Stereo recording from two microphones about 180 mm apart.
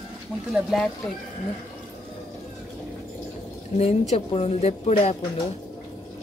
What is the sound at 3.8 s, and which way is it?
Speech, 35° left (ahead or behind).